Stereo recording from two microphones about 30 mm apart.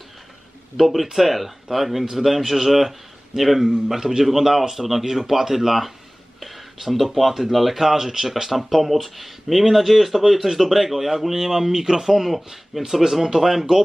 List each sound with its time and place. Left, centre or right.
0.7 s speech: centre
3.9 s speech: centre